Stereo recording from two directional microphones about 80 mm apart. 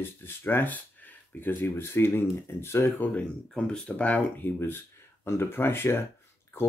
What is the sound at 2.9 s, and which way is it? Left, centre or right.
Speech, left.